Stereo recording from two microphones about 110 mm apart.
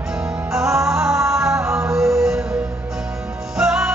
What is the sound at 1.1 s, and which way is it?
Music, 25° right (ahead or behind).